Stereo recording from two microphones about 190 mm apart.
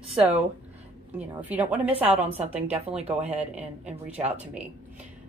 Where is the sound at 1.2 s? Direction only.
10° right (ahead or behind).